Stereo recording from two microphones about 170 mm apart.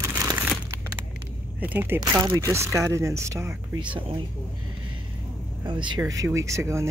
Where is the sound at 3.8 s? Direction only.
30° right (ahead or behind).